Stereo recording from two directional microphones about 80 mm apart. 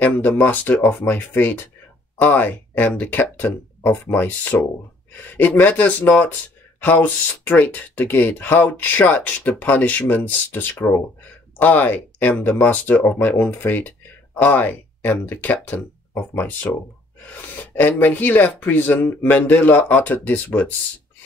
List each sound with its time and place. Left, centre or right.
0.0 s speech: left